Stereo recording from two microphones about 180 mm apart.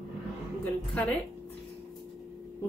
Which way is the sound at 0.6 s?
5° left (ahead or behind).